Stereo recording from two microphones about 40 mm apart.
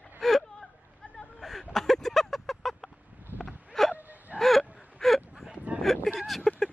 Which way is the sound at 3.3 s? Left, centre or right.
Right.